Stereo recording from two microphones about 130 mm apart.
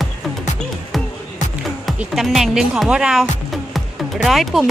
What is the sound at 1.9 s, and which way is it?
Speech, centre (ahead or behind).